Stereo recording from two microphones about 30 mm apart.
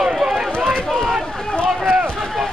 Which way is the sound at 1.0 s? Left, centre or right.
Centre.